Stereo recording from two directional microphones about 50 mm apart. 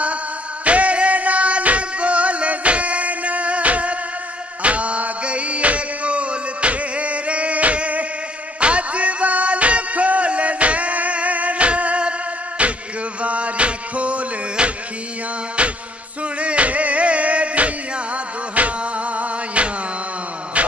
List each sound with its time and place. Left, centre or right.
0.7 s music: right
16.3 s music: right
20.5 s a sound: right